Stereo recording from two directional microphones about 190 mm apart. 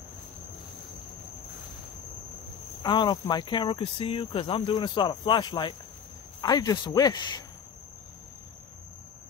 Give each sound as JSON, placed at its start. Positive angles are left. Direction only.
{"t": 2.8, "sound": "speech", "side_deg": 20}